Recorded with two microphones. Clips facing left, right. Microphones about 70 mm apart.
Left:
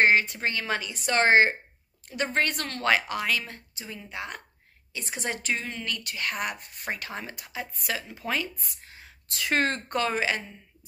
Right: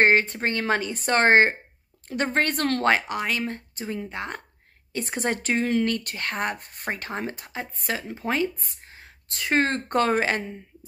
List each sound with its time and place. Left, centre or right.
0.0 s a woman's voice: right
2.9 s a woman's voice: right
5.9 s speech: right
9.9 s a woman's voice: right